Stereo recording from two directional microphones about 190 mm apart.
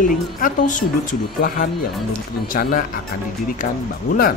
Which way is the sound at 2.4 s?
45° left (ahead or behind).